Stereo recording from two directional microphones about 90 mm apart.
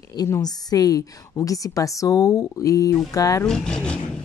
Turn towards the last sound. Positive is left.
turn(degrees=10)  # may be behind; listen again after turning